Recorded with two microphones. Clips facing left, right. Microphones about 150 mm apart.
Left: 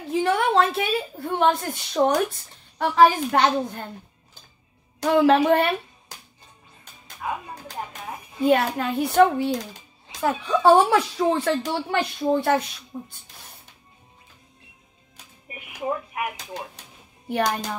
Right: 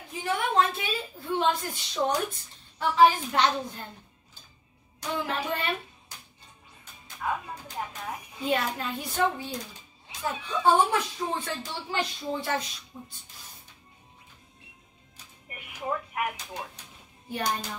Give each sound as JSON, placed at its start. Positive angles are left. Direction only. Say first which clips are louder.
{"t": 0.1, "sound": "a woman's voice", "louder": "left 7 dB", "side_deg": 75}
{"t": 5.0, "sound": "speech", "louder": "left 14 dB", "side_deg": 85}
{"t": 8.5, "sound": "a woman's voice", "louder": "left 8 dB", "side_deg": 60}
{"t": 15.8, "sound": "speech", "louder": "left 3 dB", "side_deg": 15}
{"t": 17.3, "sound": "a woman's voice", "louder": "left 7 dB", "side_deg": 65}